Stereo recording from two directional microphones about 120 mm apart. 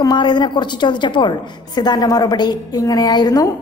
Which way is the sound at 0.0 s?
40° left (ahead or behind).